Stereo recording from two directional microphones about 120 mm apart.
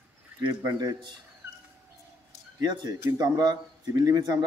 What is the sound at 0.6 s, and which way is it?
Speech, 35° right (ahead or behind).